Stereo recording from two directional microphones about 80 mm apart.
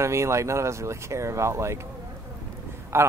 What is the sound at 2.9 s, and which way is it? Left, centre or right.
Speech, right.